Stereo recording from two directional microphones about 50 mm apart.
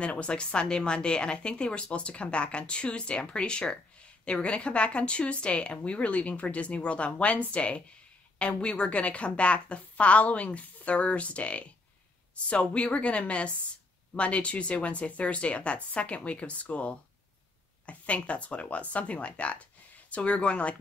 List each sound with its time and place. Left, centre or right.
0.0 s a woman's voice: left